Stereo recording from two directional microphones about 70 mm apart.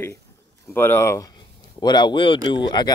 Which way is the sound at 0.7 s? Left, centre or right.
Left.